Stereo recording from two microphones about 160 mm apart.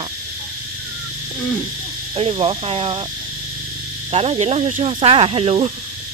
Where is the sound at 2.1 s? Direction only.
35° right (ahead or behind).